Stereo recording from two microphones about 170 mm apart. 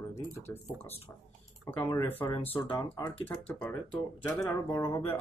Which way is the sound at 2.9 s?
15° left (ahead or behind).